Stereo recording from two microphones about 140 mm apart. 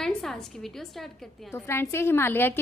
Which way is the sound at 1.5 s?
20° left (ahead or behind).